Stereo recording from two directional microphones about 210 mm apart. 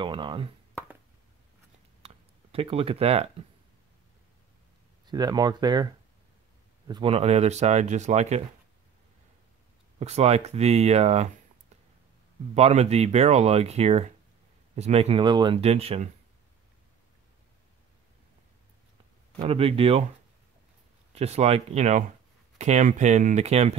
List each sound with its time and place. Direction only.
0.0 s speech: 25° right (ahead or behind)
2.0 s a sound: 25° right (ahead or behind)
5.0 s speech: 20° right (ahead or behind)
6.9 s speech: 25° right (ahead or behind)
9.9 s speech: 30° right (ahead or behind)
12.5 s speech: 30° right (ahead or behind)
19.3 s speech: 30° right (ahead or behind)
21.1 s speech: 30° right (ahead or behind)